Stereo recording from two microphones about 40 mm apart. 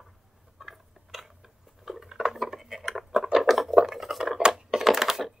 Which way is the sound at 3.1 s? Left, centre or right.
Centre.